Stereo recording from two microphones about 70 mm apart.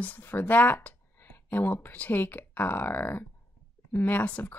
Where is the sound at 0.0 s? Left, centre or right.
Left.